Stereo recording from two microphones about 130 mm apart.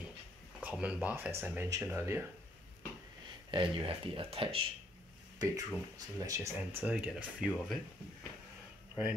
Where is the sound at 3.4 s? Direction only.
40° right (ahead or behind).